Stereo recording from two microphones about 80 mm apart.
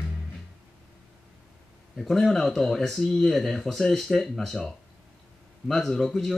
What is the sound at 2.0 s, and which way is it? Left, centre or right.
Speech, centre.